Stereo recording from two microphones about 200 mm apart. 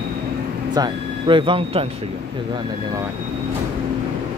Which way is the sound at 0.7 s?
20° right (ahead or behind).